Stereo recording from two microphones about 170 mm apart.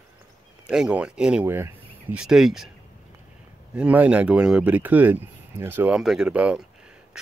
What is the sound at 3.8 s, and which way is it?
Speech, 10° right (ahead or behind).